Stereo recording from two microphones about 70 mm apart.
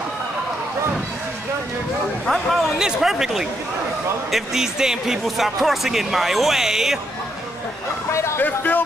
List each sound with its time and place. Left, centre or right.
2.2 s speech: centre
8.1 s speech: left
8.4 s speech: left